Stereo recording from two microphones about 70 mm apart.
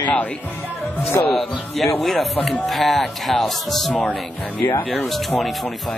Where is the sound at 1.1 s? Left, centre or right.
Left.